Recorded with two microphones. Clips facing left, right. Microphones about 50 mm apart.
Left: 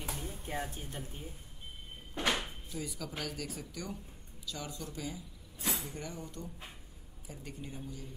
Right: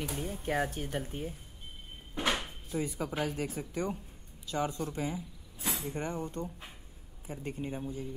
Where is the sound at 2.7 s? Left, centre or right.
Right.